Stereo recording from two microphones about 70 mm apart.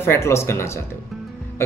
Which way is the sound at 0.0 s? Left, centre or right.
Left.